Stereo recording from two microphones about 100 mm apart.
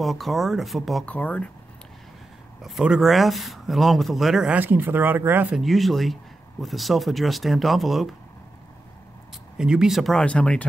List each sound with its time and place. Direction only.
0.0 s speech: centre (ahead or behind)
1.0 s speech: 15° left (ahead or behind)
2.6 s speech: 5° right (ahead or behind)
4.6 s speech: 20° right (ahead or behind)
5.6 s speech: centre (ahead or behind)
9.6 s speech: 5° right (ahead or behind); by 10.6 s 10° left (ahead or behind)